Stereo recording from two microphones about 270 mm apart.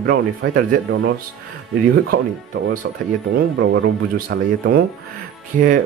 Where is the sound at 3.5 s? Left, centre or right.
Right.